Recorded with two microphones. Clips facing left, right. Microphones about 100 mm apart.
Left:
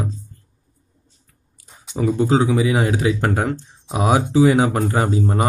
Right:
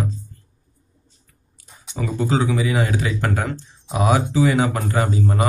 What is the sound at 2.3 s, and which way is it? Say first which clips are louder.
Speech: left 1 dB; 40° left (ahead or behind).